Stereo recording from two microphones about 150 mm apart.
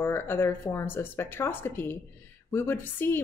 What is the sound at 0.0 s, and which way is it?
A woman's voice, 15° left (ahead or behind).